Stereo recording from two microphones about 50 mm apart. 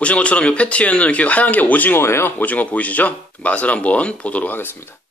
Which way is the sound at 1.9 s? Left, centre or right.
Left.